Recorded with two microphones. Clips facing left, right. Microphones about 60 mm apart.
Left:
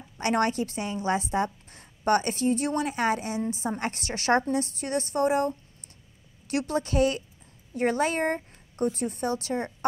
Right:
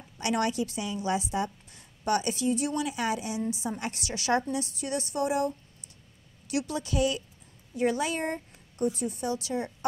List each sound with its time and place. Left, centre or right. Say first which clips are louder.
0.2 s a woman's voice: left 3 dB; left